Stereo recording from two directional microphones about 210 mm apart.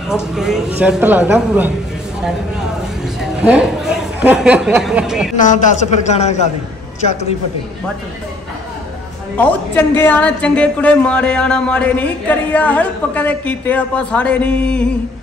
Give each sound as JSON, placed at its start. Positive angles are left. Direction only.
{"t": 0.1, "sound": "speech", "side_deg": -5}
{"t": 3.2, "sound": "speech", "side_deg": -5}
{"t": 5.3, "sound": "a man's voice", "side_deg": 35}
{"t": 9.4, "sound": "a woman's voice", "side_deg": 10}